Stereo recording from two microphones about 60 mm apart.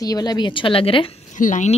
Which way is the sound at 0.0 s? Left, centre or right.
Left.